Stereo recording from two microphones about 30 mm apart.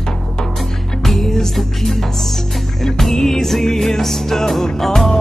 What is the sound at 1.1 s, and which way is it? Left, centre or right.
Music, centre.